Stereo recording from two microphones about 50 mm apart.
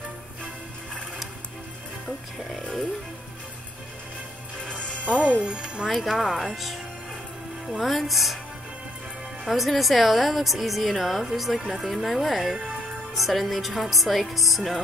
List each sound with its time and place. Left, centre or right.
4.6 s music: left
5.4 s speech: centre
5.9 s a woman's voice: centre
9.5 s a woman's voice: centre